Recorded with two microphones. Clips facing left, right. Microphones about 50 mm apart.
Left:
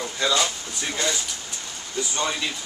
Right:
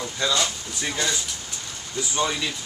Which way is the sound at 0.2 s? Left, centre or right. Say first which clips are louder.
Left 1 dB; centre.